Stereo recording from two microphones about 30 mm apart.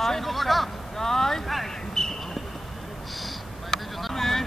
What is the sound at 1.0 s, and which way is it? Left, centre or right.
Vehicle, centre.